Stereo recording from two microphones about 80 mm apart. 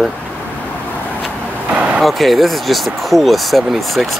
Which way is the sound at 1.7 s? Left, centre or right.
Centre.